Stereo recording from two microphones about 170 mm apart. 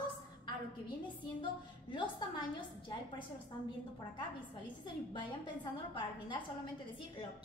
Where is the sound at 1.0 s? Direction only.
30° left (ahead or behind).